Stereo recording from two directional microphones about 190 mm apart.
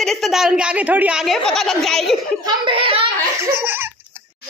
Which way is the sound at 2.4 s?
25° right (ahead or behind).